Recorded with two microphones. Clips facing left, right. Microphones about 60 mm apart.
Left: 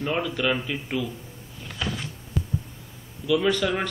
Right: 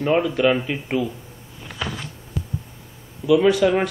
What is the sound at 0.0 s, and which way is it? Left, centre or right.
Speech, right.